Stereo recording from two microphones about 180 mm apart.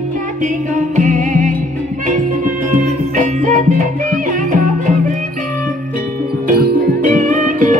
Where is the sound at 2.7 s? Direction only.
40° right (ahead or behind).